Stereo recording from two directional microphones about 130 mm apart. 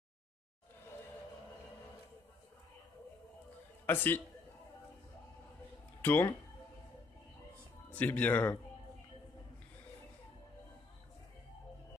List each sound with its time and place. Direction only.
3.8 s speech: 15° left (ahead or behind)
6.0 s speech: 15° left (ahead or behind)
7.9 s speech: 10° left (ahead or behind)